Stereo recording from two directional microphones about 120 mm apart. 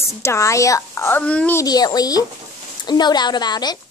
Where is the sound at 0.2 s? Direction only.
25° left (ahead or behind).